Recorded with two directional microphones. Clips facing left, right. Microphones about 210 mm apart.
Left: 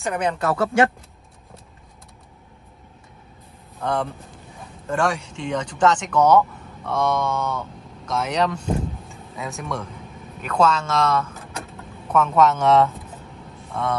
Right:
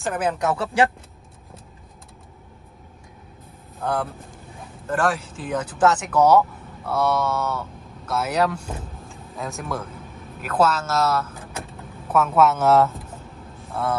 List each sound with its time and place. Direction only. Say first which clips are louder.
0.0 s speech: even; centre (ahead or behind)
3.8 s a man's voice: left 1 dB; 5° right (ahead or behind)